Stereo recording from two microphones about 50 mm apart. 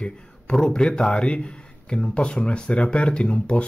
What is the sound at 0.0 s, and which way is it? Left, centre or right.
Speech, centre.